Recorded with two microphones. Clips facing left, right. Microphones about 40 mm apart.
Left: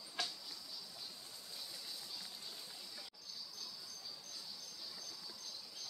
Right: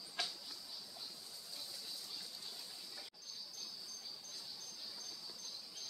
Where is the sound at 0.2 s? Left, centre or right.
Centre.